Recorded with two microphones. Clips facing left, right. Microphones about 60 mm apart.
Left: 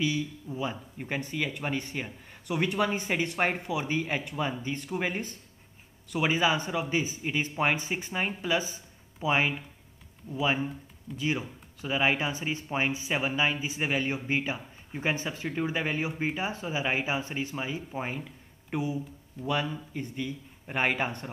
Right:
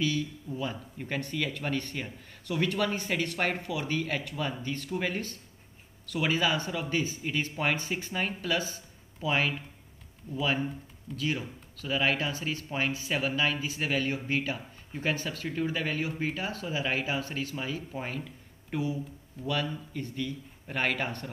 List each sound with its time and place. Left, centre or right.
0.0 s speech: centre